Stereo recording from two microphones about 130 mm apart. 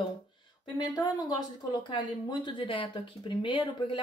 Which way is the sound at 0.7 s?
30° left (ahead or behind).